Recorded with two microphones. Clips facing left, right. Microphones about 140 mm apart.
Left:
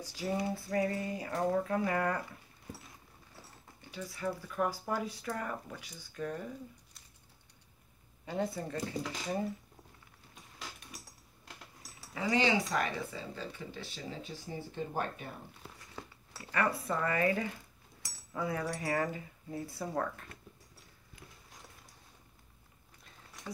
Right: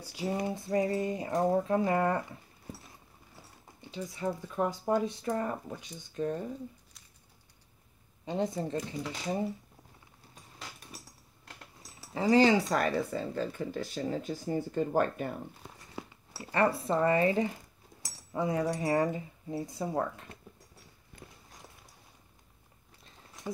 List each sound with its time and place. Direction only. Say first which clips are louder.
0.1 s speech: right 2 dB; 15° right (ahead or behind)
3.8 s speech: right 3 dB; 20° right (ahead or behind)
8.3 s speech: right 4 dB; 20° right (ahead or behind)
11.8 s speech: right 6 dB; 30° right (ahead or behind); by 15.2 s 50° right (ahead or behind)
16.0 s a sound: right 5 dB; 10° right (ahead or behind)
16.3 s speech: right 5 dB; 30° right (ahead or behind)
21.2 s a sound: right 4 dB; 25° right (ahead or behind)